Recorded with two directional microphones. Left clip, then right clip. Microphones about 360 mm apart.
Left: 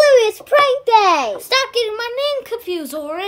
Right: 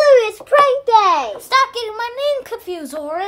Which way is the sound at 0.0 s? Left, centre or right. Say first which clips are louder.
Even; left.